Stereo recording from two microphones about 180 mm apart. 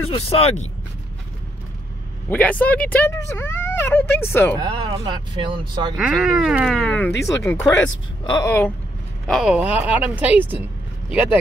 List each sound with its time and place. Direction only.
0.1 s speech: 35° left (ahead or behind)
2.2 s speech: 10° left (ahead or behind)
4.6 s speech: 25° right (ahead or behind)
5.9 s speech: centre (ahead or behind)
7.2 s speech: 15° left (ahead or behind)
9.3 s speech: 5° right (ahead or behind)